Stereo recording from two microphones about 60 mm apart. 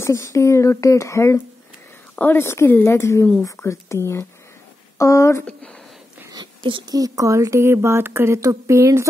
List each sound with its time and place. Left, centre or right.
0.0 s speech: left
4.9 s a sound: left
6.9 s speech: right
8.4 s speech: right